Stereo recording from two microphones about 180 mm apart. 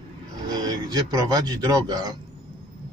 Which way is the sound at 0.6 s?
20° right (ahead or behind).